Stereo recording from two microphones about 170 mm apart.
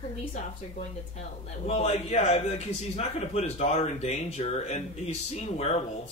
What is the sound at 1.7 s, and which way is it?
A man's voice, 35° left (ahead or behind).